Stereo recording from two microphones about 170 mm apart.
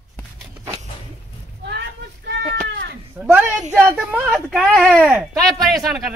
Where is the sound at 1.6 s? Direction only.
85° right.